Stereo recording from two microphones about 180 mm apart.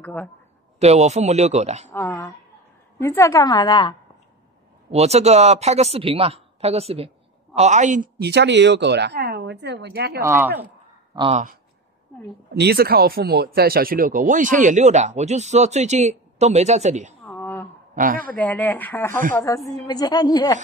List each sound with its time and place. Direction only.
0.0 s speech: 10° left (ahead or behind)
0.7 s speech: 35° right (ahead or behind)
1.9 s a woman's voice: 15° left (ahead or behind)
4.9 s speech: 35° right (ahead or behind)
8.2 s speech: 70° right (ahead or behind)
10.2 s speech: 10° right (ahead or behind)
11.1 s speech: 25° right (ahead or behind)
12.5 s speech: 60° right (ahead or behind); by 17.1 s 40° right (ahead or behind)
17.2 s a sound: 10° left (ahead or behind)
17.9 s speech: 50° right (ahead or behind)
18.3 s a woman's voice: 10° left (ahead or behind)